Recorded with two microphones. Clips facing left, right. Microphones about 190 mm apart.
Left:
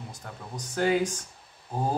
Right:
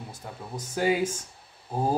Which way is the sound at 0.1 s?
5° right (ahead or behind).